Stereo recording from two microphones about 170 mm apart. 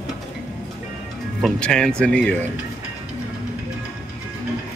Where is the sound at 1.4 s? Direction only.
5° left (ahead or behind).